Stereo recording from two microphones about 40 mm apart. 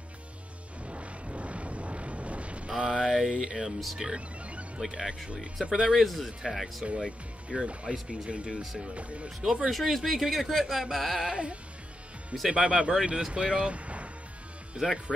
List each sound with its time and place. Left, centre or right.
0.8 s vehicle: right
2.8 s speech: centre
3.6 s speech: centre
4.7 s speech: centre
5.9 s speech: centre
7.1 s speech: right
9.4 s speech: right
9.7 s speech: centre
11.2 s speech: right
14.8 s speech: centre